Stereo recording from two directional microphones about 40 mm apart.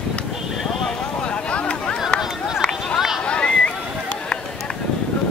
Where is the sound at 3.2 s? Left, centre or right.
Left.